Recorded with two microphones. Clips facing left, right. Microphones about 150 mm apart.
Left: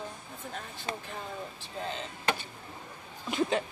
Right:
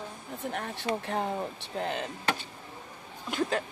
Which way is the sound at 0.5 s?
70° right (ahead or behind).